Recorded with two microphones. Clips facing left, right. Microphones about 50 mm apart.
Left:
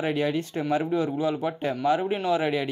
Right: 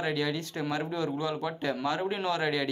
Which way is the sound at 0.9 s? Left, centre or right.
Centre.